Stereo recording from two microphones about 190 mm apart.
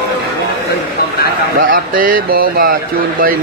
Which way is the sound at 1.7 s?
45° right (ahead or behind).